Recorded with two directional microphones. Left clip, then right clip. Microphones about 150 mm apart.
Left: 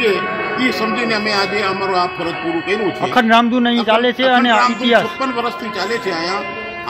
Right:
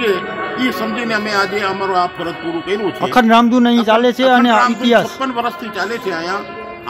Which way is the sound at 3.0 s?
60° right (ahead or behind).